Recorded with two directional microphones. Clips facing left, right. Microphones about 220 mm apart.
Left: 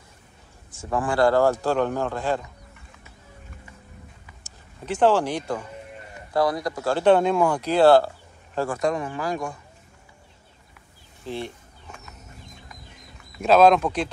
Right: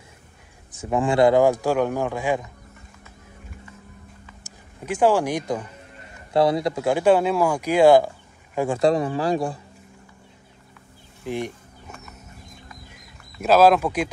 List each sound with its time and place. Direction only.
0.7 s speech: 20° right (ahead or behind)
4.4 s speech: 10° right (ahead or behind)
6.3 s speech: 25° right (ahead or behind)
8.7 s speech: 35° right (ahead or behind)
11.2 s speech: 15° right (ahead or behind)
13.4 s speech: 5° right (ahead or behind)